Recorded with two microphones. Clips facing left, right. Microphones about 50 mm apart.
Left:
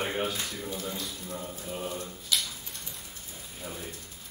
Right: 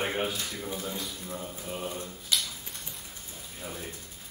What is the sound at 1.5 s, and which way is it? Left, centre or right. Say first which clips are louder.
Speech: even; centre.